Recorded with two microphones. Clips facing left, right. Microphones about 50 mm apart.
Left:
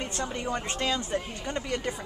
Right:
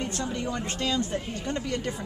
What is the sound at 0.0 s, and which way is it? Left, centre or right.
A woman's voice, left.